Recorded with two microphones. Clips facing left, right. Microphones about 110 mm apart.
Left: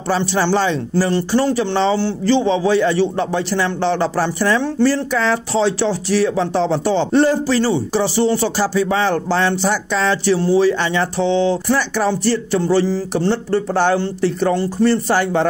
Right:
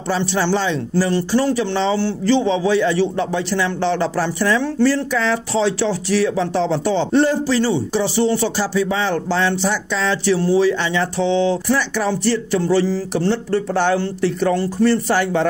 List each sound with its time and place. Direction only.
0.1 s speech: 40° left (ahead or behind)